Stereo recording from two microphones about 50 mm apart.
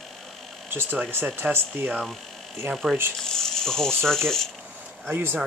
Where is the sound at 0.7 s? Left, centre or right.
Right.